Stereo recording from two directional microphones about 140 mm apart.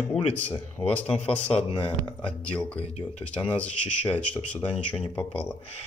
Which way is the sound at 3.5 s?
10° left (ahead or behind).